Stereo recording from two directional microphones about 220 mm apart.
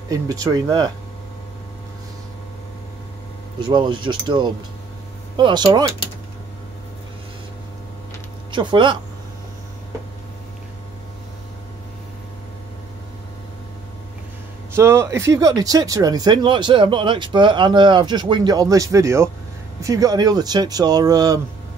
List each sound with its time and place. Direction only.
0.1 s speech: 15° right (ahead or behind)
3.6 s speech: 20° right (ahead or behind)
8.5 s speech: 20° right (ahead or behind)
14.8 s speech: 10° right (ahead or behind)